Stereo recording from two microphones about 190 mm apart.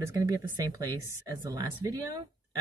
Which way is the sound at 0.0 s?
15° right (ahead or behind).